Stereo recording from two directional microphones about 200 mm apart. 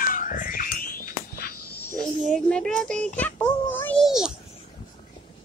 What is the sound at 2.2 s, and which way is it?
Speech, 5° left (ahead or behind).